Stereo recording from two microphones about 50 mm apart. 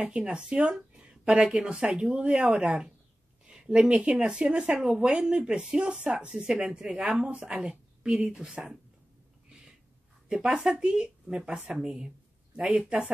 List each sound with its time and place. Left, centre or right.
0.0 s a woman's voice: right
8.4 s speech: centre
10.2 s speech: centre